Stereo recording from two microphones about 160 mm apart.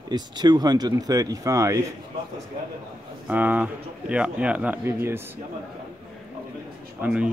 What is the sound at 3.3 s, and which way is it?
Speech, 10° right (ahead or behind).